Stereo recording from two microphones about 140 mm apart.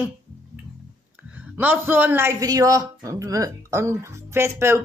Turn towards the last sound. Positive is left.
turn(degrees=-20)  # may be behind; listen again after turning